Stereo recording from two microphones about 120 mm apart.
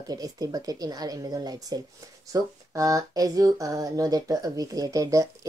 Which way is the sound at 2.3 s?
30° right (ahead or behind).